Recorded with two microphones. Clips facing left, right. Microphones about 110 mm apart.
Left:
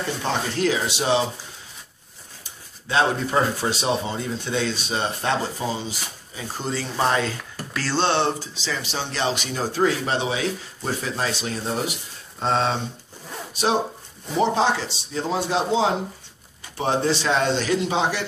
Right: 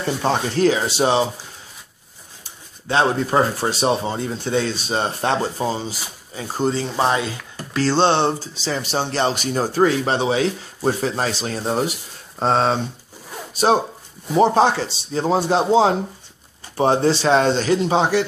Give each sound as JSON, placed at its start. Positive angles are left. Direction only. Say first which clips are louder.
{"t": 0.2, "sound": "speech", "louder": "right 6 dB", "side_deg": -35}
{"t": 2.9, "sound": "speech", "louder": "right 3 dB", "side_deg": -35}
{"t": 7.7, "sound": "speech", "louder": "right 5 dB", "side_deg": -25}
{"t": 14.4, "sound": "speech", "louder": "right 5 dB", "side_deg": -40}